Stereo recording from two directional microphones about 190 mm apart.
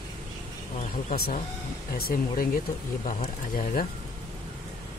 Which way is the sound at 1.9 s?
50° left (ahead or behind).